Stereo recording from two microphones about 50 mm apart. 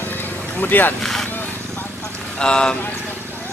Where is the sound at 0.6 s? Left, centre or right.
Left.